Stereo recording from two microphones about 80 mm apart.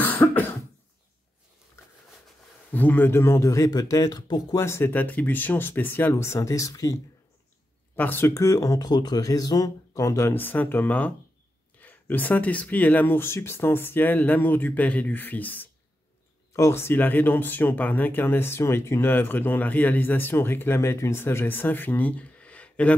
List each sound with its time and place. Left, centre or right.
0.0 s cough: left
2.7 s speech: left
4.3 s speech: left
4.6 s speech: left
6.1 s speech: left
7.9 s speech: left
8.5 s speech: left
10.3 s speech: left
16.5 s speech: left; by 22.9 s centre